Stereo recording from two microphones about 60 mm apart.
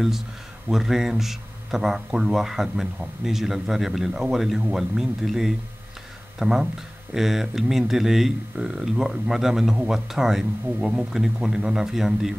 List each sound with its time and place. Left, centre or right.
0.7 s a man's voice: centre